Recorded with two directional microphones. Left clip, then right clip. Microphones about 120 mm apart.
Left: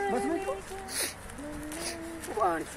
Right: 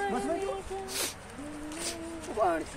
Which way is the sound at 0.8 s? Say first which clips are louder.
Left 2 dB; 15° right (ahead or behind).